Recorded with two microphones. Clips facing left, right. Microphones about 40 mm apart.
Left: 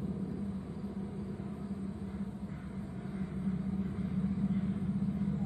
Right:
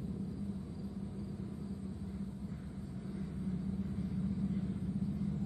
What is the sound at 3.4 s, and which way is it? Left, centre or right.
Vehicle, left.